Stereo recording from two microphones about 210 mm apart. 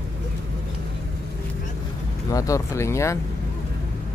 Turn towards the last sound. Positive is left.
turn(degrees=15)  # may be behind; listen again after turning